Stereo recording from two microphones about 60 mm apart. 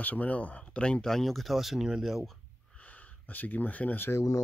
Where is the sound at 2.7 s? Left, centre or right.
Left.